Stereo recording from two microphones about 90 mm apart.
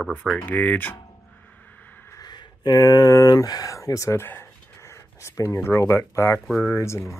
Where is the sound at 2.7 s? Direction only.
40° left (ahead or behind).